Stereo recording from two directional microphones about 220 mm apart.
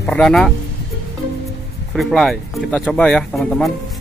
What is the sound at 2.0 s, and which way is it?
A man's voice, centre (ahead or behind).